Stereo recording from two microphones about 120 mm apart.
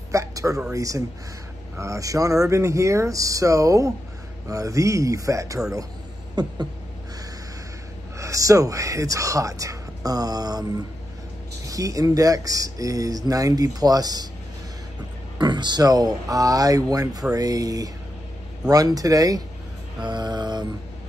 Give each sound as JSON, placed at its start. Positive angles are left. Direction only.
{"t": 0.1, "sound": "a sound", "side_deg": -25}
{"t": 0.7, "sound": "speech", "side_deg": -25}
{"t": 8.2, "sound": "speech", "side_deg": -30}
{"t": 15.3, "sound": "speech", "side_deg": -40}